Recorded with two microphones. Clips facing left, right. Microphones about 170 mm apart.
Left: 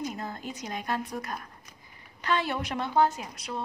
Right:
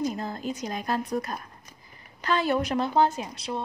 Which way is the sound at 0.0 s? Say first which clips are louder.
Right 5 dB; 35° right (ahead or behind).